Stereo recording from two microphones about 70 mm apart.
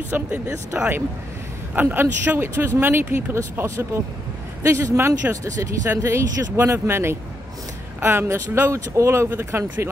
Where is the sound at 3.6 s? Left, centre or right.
Right.